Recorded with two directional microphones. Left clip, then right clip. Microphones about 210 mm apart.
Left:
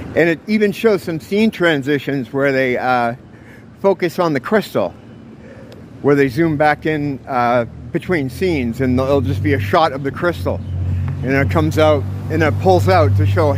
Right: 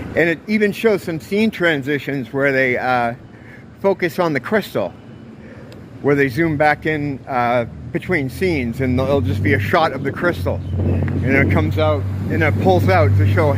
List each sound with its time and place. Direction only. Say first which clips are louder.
0.1 s speech: left 2 dB; 20° left (ahead or behind)
6.0 s speech: left 2 dB; 20° left (ahead or behind)
12.3 s speech: left 2 dB; 20° left (ahead or behind)